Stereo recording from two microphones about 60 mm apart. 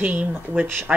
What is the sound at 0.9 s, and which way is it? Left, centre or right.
Speech, centre.